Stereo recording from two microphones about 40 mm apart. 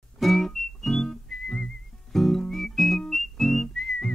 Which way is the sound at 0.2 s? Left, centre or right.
Centre.